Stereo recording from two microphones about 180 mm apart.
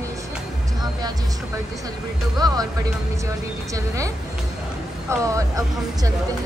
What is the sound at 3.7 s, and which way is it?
Speech, 15° right (ahead or behind).